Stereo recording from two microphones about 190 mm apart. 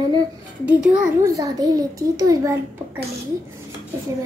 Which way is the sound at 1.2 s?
20° right (ahead or behind).